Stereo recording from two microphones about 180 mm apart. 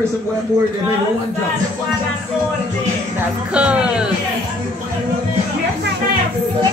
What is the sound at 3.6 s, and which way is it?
Speech, 5° right (ahead or behind).